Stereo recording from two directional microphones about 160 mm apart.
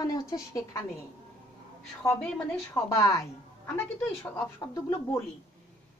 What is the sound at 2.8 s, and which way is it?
Speech, 20° left (ahead or behind).